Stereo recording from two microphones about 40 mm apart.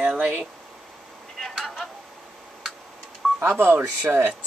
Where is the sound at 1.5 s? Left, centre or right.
Centre.